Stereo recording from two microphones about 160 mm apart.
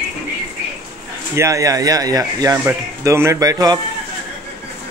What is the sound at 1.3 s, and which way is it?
Speech, 20° right (ahead or behind).